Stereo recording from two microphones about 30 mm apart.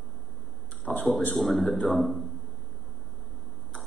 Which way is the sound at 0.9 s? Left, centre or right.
Left.